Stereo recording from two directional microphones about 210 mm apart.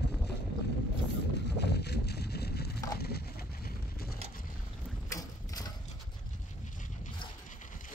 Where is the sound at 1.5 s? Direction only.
50° left (ahead or behind).